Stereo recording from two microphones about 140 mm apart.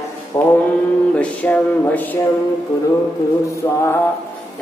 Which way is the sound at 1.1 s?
10° left (ahead or behind).